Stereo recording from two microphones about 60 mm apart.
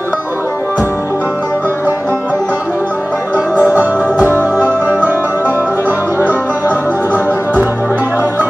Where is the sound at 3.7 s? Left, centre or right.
Right.